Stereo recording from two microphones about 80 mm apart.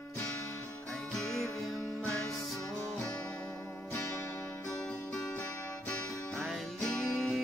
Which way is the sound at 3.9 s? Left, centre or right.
Left.